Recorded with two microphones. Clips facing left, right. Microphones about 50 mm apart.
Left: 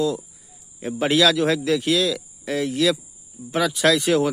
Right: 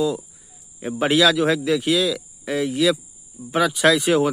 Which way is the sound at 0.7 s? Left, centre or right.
Centre.